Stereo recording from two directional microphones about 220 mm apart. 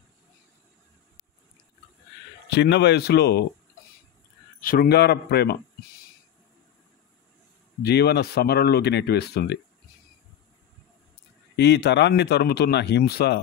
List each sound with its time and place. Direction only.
2.5 s speech: 50° left (ahead or behind)
4.6 s speech: 40° left (ahead or behind)
7.8 s speech: 45° left (ahead or behind)
11.5 s speech: 50° left (ahead or behind)